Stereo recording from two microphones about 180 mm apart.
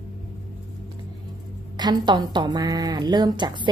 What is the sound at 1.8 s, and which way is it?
Speech, 25° right (ahead or behind).